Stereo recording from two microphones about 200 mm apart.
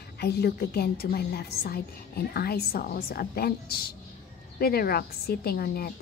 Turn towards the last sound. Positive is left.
turn(degrees=50)  # may be behind; listen again after turning